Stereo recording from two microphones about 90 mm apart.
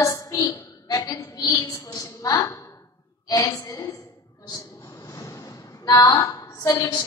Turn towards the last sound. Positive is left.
turn(degrees=45)  # may be behind; listen again after turning